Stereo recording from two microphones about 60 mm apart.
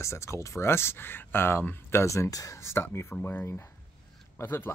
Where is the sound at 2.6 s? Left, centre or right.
Left.